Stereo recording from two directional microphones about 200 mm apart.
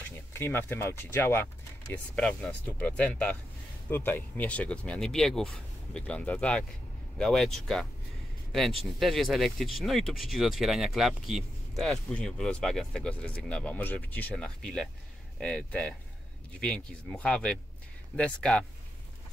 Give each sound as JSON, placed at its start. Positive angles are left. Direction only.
{"t": 0.3, "sound": "a man's voice", "side_deg": 10}